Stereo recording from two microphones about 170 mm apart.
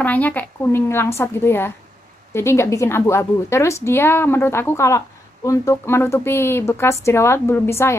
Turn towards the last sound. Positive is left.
turn(degrees=15)  # may be behind; listen again after turning